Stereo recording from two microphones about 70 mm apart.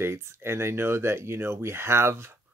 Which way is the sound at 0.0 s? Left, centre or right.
Right.